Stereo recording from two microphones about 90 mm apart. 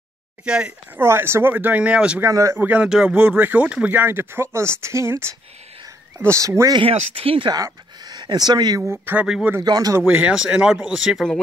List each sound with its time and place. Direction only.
0.5 s speech: 10° right (ahead or behind)
0.9 s speech: 25° right (ahead or behind)
2.2 s speech: 40° right (ahead or behind)
2.5 s speech: 20° right (ahead or behind); by 6.7 s 35° right (ahead or behind)
6.7 s speech: 80° right
7.5 s speech: 50° right (ahead or behind)
9.2 s speech: 10° right (ahead or behind)
9.7 s speech: 45° right (ahead or behind)
10.0 s speech: 15° right (ahead or behind)